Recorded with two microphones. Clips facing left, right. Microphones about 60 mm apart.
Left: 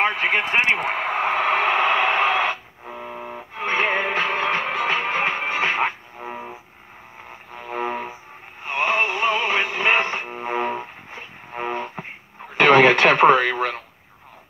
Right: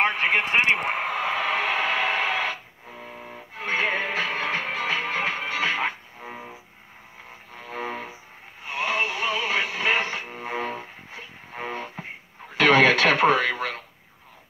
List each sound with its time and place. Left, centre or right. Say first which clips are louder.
0.0 s speech: left 2 dB; left
1.1 s radio: left 8 dB; left
7.5 s vehicle: left 6 dB; left
8.6 s radio: left 5 dB; left